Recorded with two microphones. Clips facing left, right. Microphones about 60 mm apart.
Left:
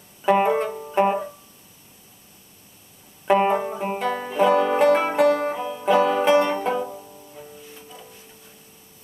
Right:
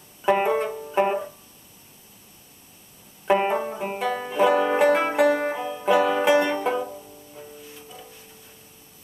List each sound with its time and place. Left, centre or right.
0.2 s music: centre
3.3 s banjo: centre
5.3 s music: centre
6.6 s banjo: centre
6.9 s banjo: centre
7.3 s music: centre